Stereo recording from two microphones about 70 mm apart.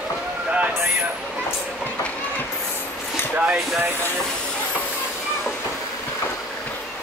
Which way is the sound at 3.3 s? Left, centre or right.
Right.